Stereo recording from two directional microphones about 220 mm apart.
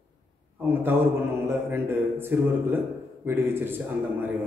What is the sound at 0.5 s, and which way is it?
A man's voice, 10° right (ahead or behind).